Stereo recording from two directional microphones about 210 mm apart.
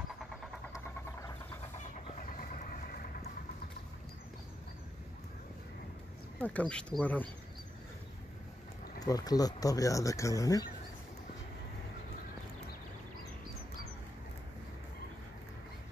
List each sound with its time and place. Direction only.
1.8 s vehicle: 35° left (ahead or behind)
6.3 s speech: 5° left (ahead or behind)
9.0 s speech: 20° left (ahead or behind)